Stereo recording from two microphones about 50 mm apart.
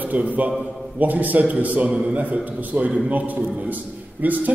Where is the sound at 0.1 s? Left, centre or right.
Right.